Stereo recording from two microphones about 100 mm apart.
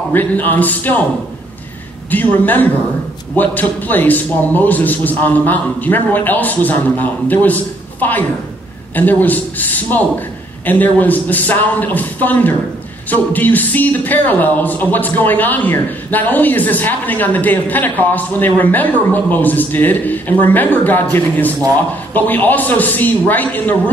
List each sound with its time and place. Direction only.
0.1 s speech: 20° left (ahead or behind)
2.0 s speech: 20° left (ahead or behind)